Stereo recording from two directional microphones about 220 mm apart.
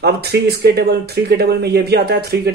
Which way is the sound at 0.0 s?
45° right (ahead or behind).